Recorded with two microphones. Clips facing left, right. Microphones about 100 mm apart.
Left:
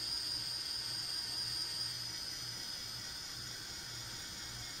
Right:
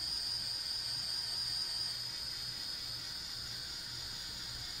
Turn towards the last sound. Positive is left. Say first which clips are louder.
# even
turn(degrees=-10)  # may be behind; listen again after turning